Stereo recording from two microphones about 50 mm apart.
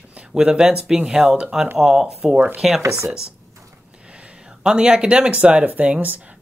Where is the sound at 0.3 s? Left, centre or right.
Centre.